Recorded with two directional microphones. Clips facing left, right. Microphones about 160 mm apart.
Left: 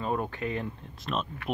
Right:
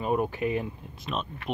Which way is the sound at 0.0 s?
15° right (ahead or behind).